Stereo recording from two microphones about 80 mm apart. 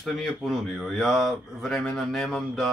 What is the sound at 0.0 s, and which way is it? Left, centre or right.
Speech, centre.